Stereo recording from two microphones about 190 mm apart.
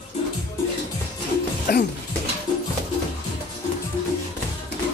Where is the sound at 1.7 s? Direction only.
60° left (ahead or behind).